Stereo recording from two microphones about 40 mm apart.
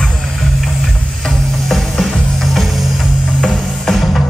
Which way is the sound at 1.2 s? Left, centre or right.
Centre.